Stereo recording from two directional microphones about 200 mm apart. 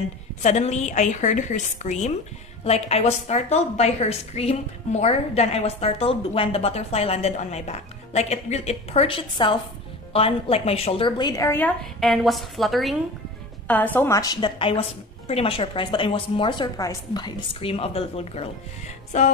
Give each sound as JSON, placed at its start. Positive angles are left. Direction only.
{"t": 0.4, "sound": "a woman's voice", "side_deg": 35}